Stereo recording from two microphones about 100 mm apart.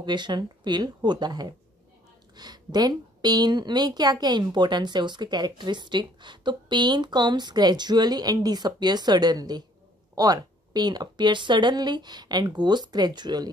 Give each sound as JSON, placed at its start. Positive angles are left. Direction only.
{"t": 0.0, "sound": "a woman's voice", "side_deg": -50}